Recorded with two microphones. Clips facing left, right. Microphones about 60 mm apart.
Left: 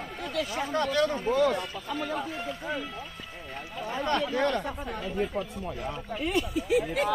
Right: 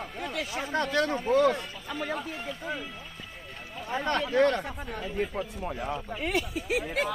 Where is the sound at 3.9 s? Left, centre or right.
Right.